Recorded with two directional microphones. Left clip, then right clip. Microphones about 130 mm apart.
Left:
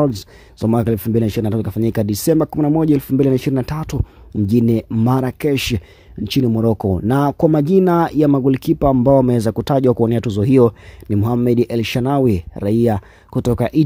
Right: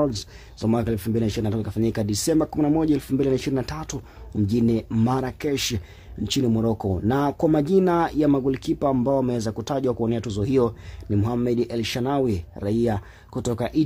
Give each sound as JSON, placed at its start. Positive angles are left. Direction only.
{"t": 0.0, "sound": "speech", "side_deg": 50}
{"t": 6.2, "sound": "speech", "side_deg": 40}